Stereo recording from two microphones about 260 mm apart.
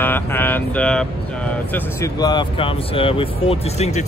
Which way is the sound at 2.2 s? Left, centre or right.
Centre.